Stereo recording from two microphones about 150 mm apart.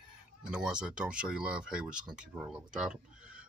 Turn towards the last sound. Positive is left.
turn(degrees=-5)  # may be behind; listen again after turning